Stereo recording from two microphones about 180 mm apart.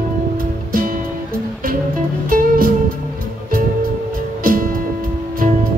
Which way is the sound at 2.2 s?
55° right (ahead or behind).